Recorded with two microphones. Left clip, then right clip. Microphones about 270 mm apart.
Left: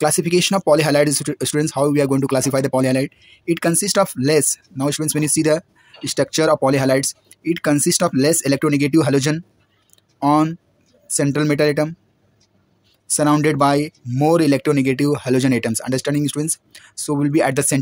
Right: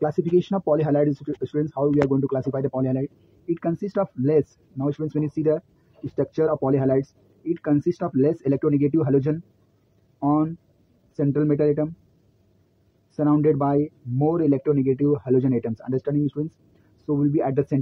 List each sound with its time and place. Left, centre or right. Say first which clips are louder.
0.0 s speech: left 5 dB; left
5.0 s speech: left 4 dB; left
13.2 s speech: left 5 dB; left